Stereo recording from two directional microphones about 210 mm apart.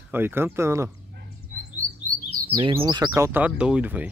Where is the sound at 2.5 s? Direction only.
25° right (ahead or behind); by 4.1 s 5° right (ahead or behind).